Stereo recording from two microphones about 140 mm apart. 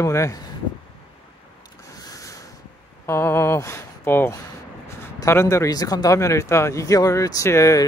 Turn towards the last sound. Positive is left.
turn(degrees=20)  # may be behind; listen again after turning